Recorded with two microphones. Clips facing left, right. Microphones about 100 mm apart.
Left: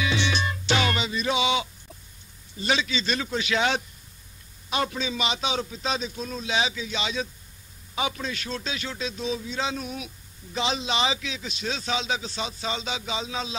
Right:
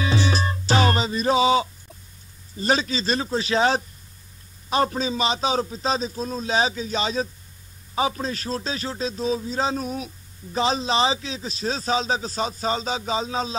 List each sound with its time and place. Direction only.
0.0 s music: 35° right (ahead or behind)
2.5 s a man's voice: 40° right (ahead or behind)